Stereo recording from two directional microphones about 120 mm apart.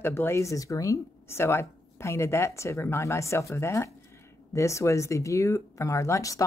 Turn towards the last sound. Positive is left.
turn(degrees=30)  # may be behind; listen again after turning